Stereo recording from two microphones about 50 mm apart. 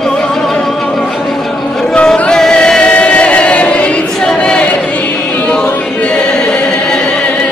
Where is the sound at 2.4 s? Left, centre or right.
Centre.